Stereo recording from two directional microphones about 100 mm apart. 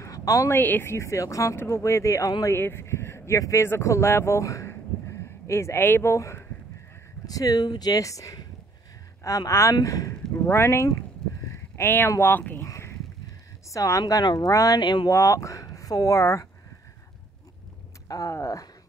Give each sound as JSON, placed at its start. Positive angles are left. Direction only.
{"t": 0.0, "sound": "a sound", "side_deg": 35}
{"t": 0.6, "sound": "speech", "side_deg": 20}
{"t": 7.2, "sound": "speech", "side_deg": 35}
{"t": 11.4, "sound": "a sound", "side_deg": 25}
{"t": 12.1, "sound": "speech", "side_deg": 25}
{"t": 12.6, "sound": "a sound", "side_deg": 30}
{"t": 13.7, "sound": "speech", "side_deg": 30}
{"t": 15.0, "sound": "speech", "side_deg": 30}
{"t": 18.0, "sound": "speech", "side_deg": 35}